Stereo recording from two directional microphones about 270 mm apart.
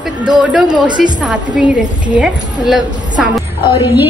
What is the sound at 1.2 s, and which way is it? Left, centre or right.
A woman's voice, centre.